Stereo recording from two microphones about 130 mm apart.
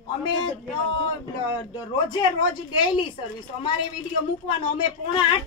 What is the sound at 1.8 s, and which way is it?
Speech, 35° left (ahead or behind).